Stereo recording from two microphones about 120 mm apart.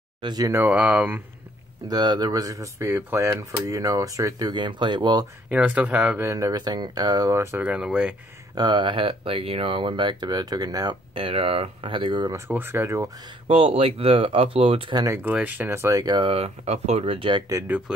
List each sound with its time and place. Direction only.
0.2 s speech: 35° right (ahead or behind)
0.5 s speech: 15° right (ahead or behind)
1.9 s speech: 35° right (ahead or behind)
5.5 s speech: 10° right (ahead or behind); by 7.3 s 35° right (ahead or behind)
7.3 s speech: 15° right (ahead or behind)
8.5 s speech: 40° right (ahead or behind)
11.1 s speech: 50° right (ahead or behind)
12.3 s speech: 20° right (ahead or behind)
13.5 s speech: 50° right (ahead or behind)
15.2 s speech: 15° right (ahead or behind); by 16.2 s 30° right (ahead or behind)
16.2 s speech: 55° right (ahead or behind)
17.6 s speech: 15° right (ahead or behind)